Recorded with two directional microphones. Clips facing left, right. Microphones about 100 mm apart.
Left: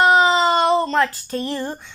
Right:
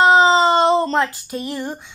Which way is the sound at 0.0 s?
25° right (ahead or behind).